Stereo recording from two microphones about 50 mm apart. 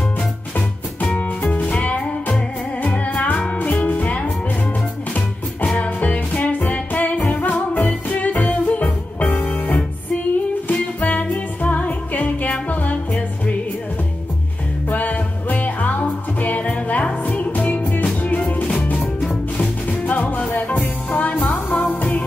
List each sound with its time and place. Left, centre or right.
0.6 s music: left
5.8 s music: left
9.7 s music: centre
10.7 s music: left
14.9 s music: left